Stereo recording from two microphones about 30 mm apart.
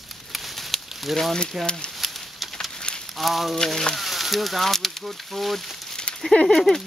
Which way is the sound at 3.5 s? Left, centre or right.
Centre.